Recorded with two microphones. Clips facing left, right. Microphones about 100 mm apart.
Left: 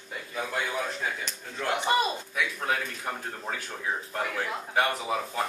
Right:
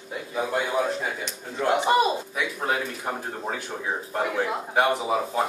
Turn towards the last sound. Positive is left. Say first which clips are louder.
# right 5 dB
turn(degrees=-15)  # may be behind; listen again after turning